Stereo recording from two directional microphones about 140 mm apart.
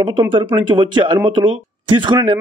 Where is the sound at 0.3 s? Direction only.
35° right (ahead or behind).